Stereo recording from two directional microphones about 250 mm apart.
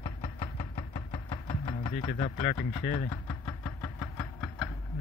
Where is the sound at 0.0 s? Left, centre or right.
Left.